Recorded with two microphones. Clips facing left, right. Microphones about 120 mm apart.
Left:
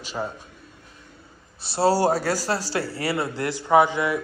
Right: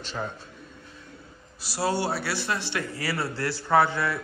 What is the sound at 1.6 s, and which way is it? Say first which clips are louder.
A man's voice: left 7 dB; 25° left (ahead or behind).